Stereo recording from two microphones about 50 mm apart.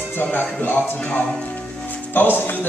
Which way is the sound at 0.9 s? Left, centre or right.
Left.